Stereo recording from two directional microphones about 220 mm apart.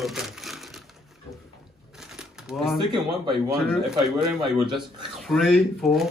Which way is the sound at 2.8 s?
20° right (ahead or behind).